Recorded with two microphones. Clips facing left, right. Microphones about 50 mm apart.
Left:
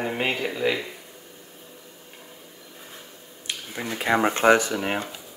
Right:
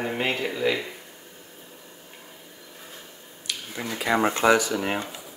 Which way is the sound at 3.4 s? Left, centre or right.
Centre.